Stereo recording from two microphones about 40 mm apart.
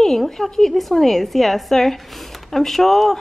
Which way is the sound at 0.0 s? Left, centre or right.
Centre.